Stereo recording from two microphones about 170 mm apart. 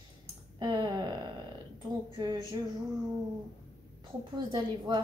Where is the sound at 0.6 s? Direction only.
25° right (ahead or behind).